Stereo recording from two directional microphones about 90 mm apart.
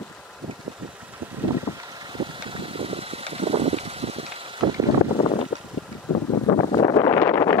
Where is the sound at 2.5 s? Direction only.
90° right.